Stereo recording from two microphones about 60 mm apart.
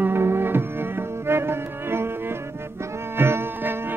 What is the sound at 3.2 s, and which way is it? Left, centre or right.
Music, right.